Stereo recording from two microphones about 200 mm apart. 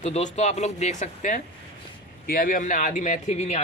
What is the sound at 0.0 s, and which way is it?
Speech, 35° left (ahead or behind).